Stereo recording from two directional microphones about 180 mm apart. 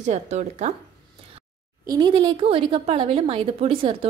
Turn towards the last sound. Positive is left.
turn(degrees=-30)  # may be behind; listen again after turning